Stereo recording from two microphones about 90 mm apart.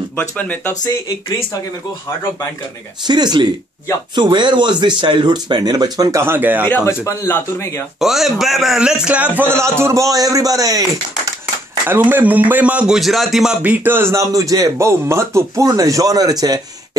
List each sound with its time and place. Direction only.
0.1 s speech: 20° left (ahead or behind)
0.8 s speech: 40° left (ahead or behind)
3.1 s speech: 55° right (ahead or behind)
6.2 s speech: 20° right (ahead or behind)
6.6 s speech: 20° left (ahead or behind)
7.1 s speech: 35° left (ahead or behind)
8.0 s speech: 5° right (ahead or behind); by 9.6 s 20° right (ahead or behind)
9.6 s a man's voice: 30° right (ahead or behind)
11.9 s speech: 20° right (ahead or behind); by 13.6 s 5° right (ahead or behind)
13.6 s a man's voice: 20° right (ahead or behind); by 16.6 s 45° right (ahead or behind)